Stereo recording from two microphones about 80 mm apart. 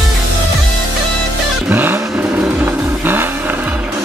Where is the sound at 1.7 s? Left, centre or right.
Right.